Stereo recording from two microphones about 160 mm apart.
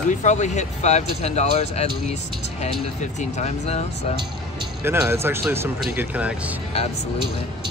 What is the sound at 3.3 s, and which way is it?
Speech, 45° left (ahead or behind).